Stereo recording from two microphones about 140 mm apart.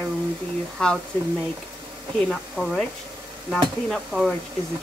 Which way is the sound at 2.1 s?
5° left (ahead or behind).